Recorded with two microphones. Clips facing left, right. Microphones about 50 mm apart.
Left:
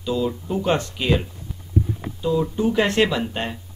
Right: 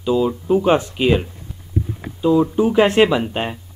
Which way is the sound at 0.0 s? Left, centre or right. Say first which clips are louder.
Right 6 dB; centre.